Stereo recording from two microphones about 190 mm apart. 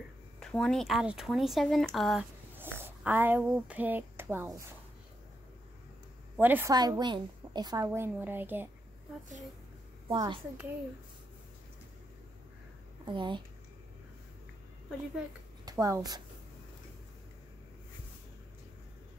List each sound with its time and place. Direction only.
0.4 s speech: 5° left (ahead or behind)
2.5 s speech: 10° right (ahead or behind)
6.3 s a woman's voice: 10° right (ahead or behind)
10.0 s a child's voice: 25° right (ahead or behind)
13.0 s speech: 25° right (ahead or behind)
15.6 s speech: 15° right (ahead or behind)